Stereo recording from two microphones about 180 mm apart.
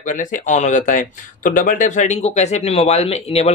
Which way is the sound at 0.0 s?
45° left (ahead or behind).